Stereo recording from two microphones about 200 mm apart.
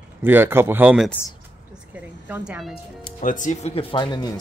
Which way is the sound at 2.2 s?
5° right (ahead or behind).